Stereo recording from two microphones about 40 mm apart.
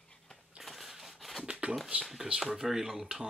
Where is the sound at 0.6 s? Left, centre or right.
Centre.